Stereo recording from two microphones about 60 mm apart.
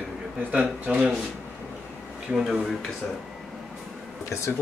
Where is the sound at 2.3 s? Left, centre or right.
Centre.